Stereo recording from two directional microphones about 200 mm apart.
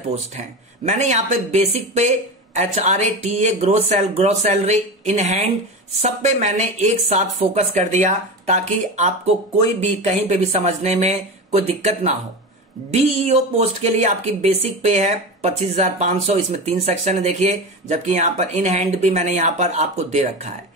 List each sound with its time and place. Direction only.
0.8 s speech: 35° right (ahead or behind)
13.2 s speech: 35° right (ahead or behind)